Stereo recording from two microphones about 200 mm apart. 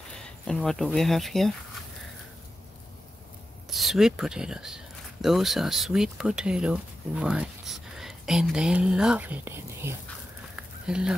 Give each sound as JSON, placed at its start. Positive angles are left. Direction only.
{"t": 0.2, "sound": "speech", "side_deg": 5}
{"t": 3.7, "sound": "speech", "side_deg": 0}
{"t": 10.5, "sound": "a sound", "side_deg": -5}